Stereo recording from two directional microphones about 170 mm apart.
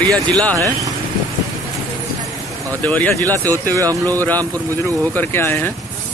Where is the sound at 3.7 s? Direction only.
20° right (ahead or behind).